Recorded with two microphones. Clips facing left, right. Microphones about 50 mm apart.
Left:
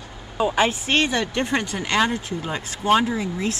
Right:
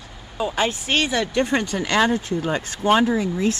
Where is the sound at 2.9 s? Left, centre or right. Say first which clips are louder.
Right 1 dB; centre.